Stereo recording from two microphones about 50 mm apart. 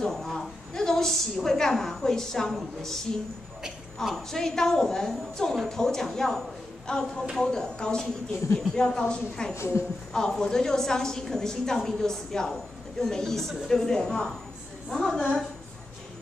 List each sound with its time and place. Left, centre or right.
0.0 s a woman's voice: centre
4.1 s a woman's voice: centre
9.6 s a woman's voice: left
10.1 s a woman's voice: centre